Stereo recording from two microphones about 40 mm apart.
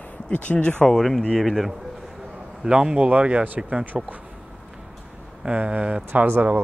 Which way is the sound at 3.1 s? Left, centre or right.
Right.